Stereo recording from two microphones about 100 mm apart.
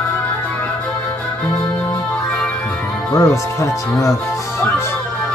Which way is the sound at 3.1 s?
30° left (ahead or behind).